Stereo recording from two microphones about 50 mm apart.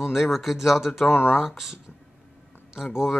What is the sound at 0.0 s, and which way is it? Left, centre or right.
Speech, centre.